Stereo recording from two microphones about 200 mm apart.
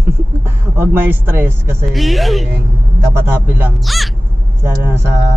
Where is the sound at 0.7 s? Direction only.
10° right (ahead or behind).